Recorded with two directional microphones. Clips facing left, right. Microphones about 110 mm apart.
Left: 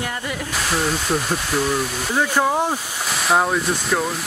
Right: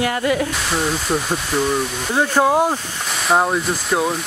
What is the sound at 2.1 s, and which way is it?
Speech, 15° right (ahead or behind).